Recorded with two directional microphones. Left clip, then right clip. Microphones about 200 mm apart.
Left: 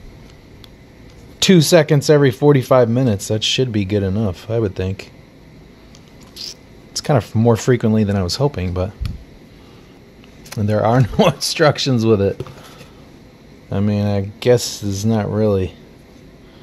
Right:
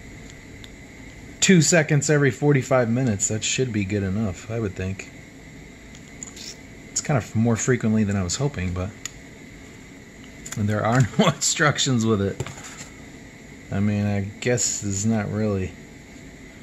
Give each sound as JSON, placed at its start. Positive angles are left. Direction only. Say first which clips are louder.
{"t": 1.4, "sound": "speech", "louder": "left 6 dB", "side_deg": 45}
{"t": 6.3, "sound": "speech", "louder": "left 6 dB", "side_deg": 45}
{"t": 10.5, "sound": "speech", "louder": "left 7 dB", "side_deg": 35}
{"t": 13.7, "sound": "speech", "louder": "left 6 dB", "side_deg": 40}